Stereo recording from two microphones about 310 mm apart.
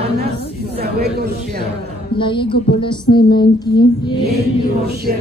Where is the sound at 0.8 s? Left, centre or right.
Right.